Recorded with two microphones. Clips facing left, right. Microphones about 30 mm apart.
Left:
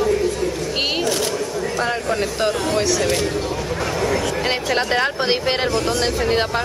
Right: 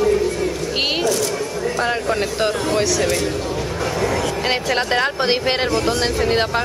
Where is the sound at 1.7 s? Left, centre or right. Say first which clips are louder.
Right 1 dB; centre.